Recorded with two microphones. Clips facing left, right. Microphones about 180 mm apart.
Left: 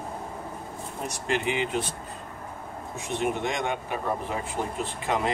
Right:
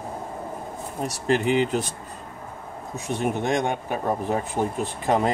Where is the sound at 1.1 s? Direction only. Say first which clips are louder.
Right 6 dB; 40° right (ahead or behind).